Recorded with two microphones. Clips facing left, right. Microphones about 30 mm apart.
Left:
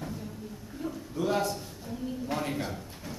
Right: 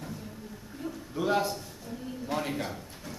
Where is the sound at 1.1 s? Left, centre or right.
Centre.